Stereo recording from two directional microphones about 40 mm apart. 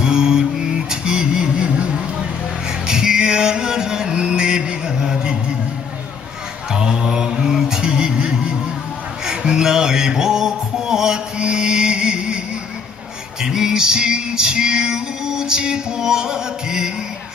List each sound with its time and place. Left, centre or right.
0.0 s a sound: centre
2.9 s music: centre
6.7 s mantra: centre
9.2 s music: centre
13.4 s music: centre